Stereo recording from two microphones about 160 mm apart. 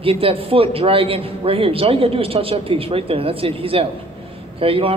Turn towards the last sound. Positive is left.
turn(degrees=-35)  # may be behind; listen again after turning